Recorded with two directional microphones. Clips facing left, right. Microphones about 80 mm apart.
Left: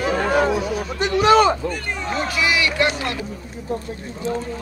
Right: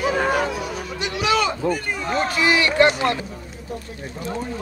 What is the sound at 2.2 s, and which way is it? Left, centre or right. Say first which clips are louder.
Speech: right 2 dB; right.